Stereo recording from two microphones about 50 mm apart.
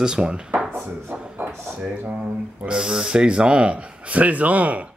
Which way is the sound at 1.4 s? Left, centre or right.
Right.